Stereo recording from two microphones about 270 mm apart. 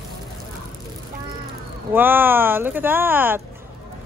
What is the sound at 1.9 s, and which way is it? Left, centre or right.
Speech, centre.